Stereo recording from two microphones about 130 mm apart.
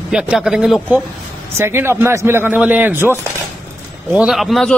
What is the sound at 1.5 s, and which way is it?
A man's voice, 20° right (ahead or behind).